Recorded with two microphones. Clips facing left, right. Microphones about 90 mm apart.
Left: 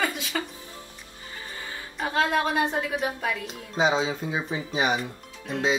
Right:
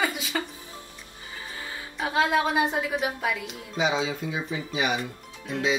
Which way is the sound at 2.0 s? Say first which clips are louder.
Right 1 dB; 5° right (ahead or behind).